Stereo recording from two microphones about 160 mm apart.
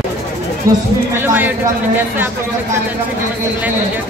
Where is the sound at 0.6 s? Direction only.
60° right (ahead or behind).